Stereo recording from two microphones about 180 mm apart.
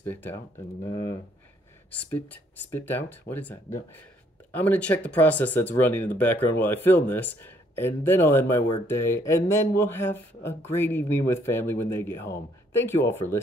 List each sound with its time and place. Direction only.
0.0 s speech: 10° left (ahead or behind)